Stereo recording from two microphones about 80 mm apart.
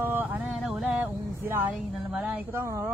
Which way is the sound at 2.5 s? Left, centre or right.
Right.